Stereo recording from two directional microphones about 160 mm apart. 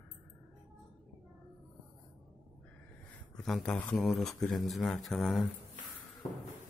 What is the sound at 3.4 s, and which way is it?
Speech, centre (ahead or behind).